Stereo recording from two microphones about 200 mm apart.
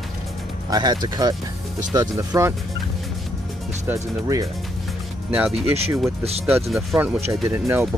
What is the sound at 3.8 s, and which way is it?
Speech, 15° right (ahead or behind).